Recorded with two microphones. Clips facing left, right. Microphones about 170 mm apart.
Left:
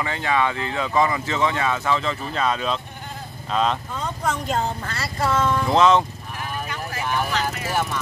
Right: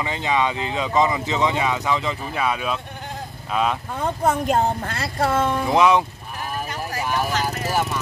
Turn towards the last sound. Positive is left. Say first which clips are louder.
# right 1 dB
turn(degrees=-40)  # may be behind; listen again after turning